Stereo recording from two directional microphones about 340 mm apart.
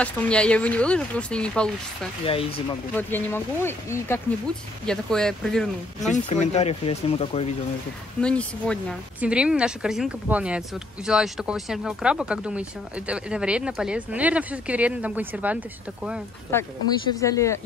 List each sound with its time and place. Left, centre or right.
0.0 s speech: centre
2.2 s speech: centre
2.9 s speech: centre
6.1 s speech: left
8.2 s speech: centre
16.5 s speech: centre